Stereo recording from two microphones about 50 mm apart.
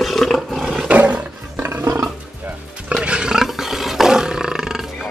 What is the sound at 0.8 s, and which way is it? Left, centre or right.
Roar, right.